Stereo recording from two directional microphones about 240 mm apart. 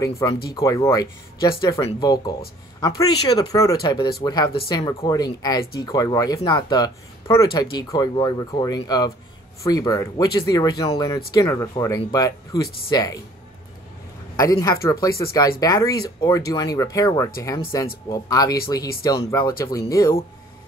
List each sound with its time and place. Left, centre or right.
0.0 s speech: centre
14.3 s speech: centre